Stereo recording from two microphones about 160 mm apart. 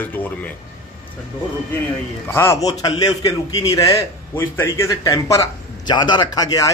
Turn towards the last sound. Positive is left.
turn(degrees=25)  # may be behind; listen again after turning